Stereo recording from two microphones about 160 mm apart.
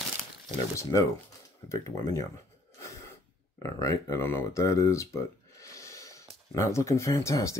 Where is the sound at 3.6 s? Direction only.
20° left (ahead or behind).